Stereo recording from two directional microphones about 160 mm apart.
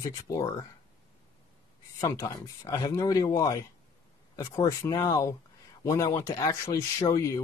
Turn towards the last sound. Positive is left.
turn(degrees=20)  # may be behind; listen again after turning